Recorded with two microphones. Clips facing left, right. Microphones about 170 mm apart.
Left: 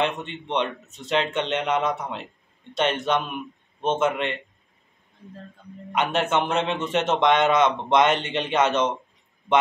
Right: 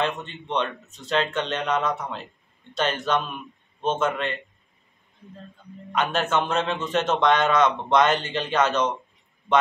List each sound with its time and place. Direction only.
0.5 s a man's voice: 20° left (ahead or behind)
5.9 s a man's voice: 20° left (ahead or behind)